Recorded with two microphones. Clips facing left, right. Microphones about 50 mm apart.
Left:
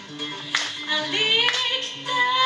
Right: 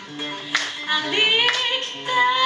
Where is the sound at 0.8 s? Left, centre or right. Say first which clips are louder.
Right 4 dB; right.